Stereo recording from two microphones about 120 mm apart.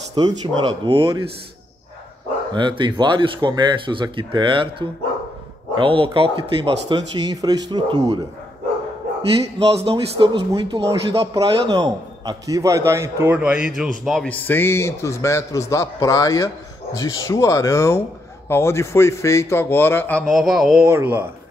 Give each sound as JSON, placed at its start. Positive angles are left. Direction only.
{"t": 0.1, "sound": "speech", "side_deg": -40}
{"t": 2.5, "sound": "speech", "side_deg": -40}
{"t": 9.6, "sound": "a man's voice", "side_deg": -55}
{"t": 13.4, "sound": "speech", "side_deg": -10}
{"t": 14.2, "sound": "a man's voice", "side_deg": 15}
{"t": 20.2, "sound": "speech", "side_deg": 0}
{"t": 20.8, "sound": "speech", "side_deg": -15}